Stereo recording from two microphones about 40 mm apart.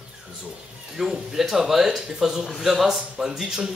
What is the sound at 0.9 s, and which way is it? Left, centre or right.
Speech, centre.